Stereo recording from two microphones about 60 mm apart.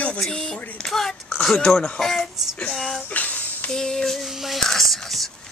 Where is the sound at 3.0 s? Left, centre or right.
Left.